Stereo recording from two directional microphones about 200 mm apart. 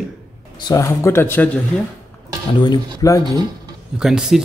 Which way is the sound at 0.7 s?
15° left (ahead or behind).